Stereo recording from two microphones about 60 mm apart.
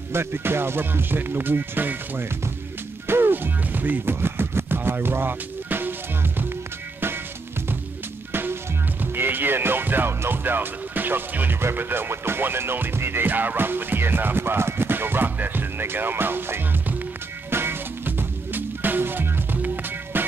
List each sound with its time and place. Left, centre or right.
0.1 s music: right
8.3 s music: right
9.0 s speech: right
11.6 s music: right